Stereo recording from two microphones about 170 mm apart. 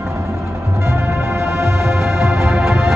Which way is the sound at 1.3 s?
Centre (ahead or behind).